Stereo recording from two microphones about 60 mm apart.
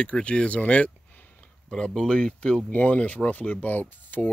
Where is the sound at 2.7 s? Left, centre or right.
Left.